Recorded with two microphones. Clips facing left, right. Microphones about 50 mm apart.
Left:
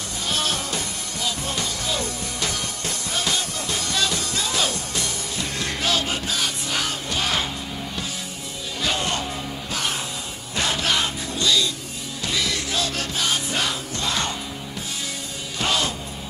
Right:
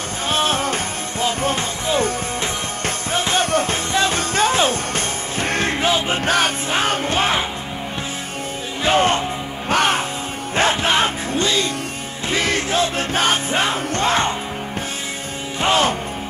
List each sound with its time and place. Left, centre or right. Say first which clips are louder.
0.3 s music: right 7 dB; right
5.9 s music: right 3 dB; right
6.1 s music: right 8 dB; right
8.8 s music: right 9 dB; right
9.7 s music: right 12 dB; right
10.5 s music: right 6 dB; right
15.6 s music: right 7 dB; right